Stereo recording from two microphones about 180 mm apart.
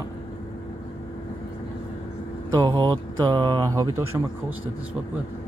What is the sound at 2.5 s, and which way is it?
Speech, 20° right (ahead or behind).